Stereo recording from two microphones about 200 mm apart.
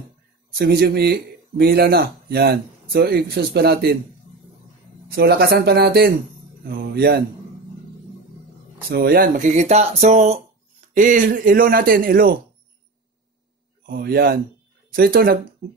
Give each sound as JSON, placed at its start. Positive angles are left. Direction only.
{"t": 0.6, "sound": "speech", "side_deg": -55}
{"t": 5.1, "sound": "speech", "side_deg": -55}
{"t": 8.8, "sound": "speech", "side_deg": -50}
{"t": 13.8, "sound": "speech", "side_deg": -50}